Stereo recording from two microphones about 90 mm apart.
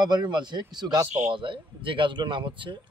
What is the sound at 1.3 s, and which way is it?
Speech, 70° right (ahead or behind).